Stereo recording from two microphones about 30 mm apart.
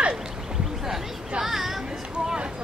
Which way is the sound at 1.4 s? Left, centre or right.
Centre.